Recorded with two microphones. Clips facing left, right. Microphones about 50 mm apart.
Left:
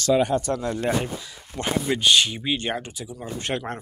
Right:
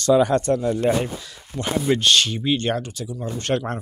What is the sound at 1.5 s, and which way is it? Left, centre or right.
Speech, left.